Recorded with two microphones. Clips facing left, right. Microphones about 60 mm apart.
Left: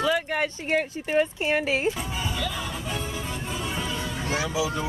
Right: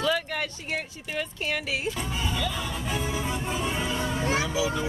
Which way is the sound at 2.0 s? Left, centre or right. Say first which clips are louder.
Even; centre.